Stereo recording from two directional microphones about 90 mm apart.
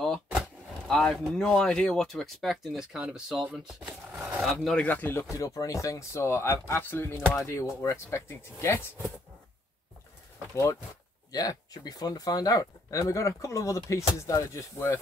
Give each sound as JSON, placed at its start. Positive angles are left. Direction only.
{"t": 0.0, "sound": "a sound", "side_deg": 5}
{"t": 1.3, "sound": "speech", "side_deg": 5}
{"t": 3.5, "sound": "a sound", "side_deg": -5}
{"t": 4.8, "sound": "speech", "side_deg": 20}
{"t": 5.3, "sound": "speech", "side_deg": 40}
{"t": 10.5, "sound": "speech", "side_deg": 35}
{"t": 11.3, "sound": "speech", "side_deg": 45}